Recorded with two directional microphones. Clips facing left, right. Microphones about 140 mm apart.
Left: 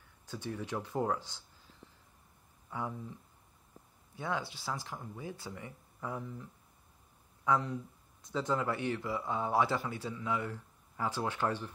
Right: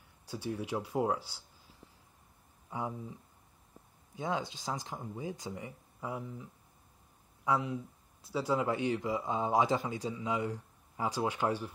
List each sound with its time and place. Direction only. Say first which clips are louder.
0.3 s speech: right 2 dB; 10° right (ahead or behind)
2.7 s speech: right 1 dB; 15° right (ahead or behind)